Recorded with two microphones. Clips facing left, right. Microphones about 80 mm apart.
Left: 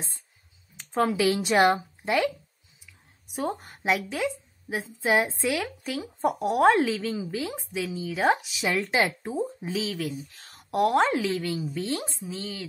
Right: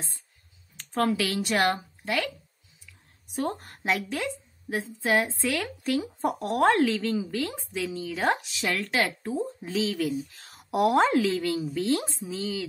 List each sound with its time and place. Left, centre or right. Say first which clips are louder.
0.7 s speech: left 1 dB; centre
3.3 s a woman's voice: even; centre
8.6 s speech: left 2 dB; centre
9.7 s a woman's voice: right 3 dB; centre